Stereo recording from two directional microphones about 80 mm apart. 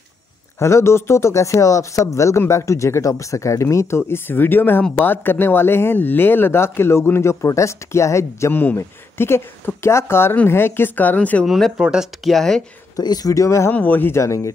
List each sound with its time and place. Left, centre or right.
0.6 s speech: left; by 11.4 s centre
11.4 s speech: centre
12.3 s speech: centre
13.0 s speech: left
13.7 s speech: left
14.1 s speech: left